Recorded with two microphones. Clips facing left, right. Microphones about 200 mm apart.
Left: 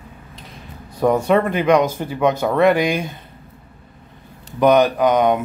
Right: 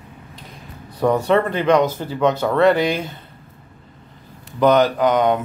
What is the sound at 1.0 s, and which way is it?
Speech, 10° left (ahead or behind).